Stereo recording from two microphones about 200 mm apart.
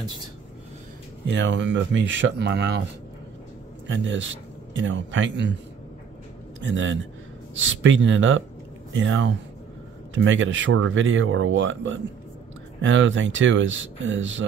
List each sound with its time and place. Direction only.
1.2 s speech: 65° right (ahead or behind)
3.8 s speech: 70° right (ahead or behind)
6.6 s speech: 70° right (ahead or behind)